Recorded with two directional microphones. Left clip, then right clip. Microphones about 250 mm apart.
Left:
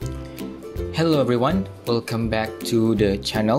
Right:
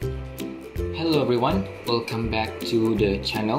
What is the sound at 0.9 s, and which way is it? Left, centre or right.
Speech, left.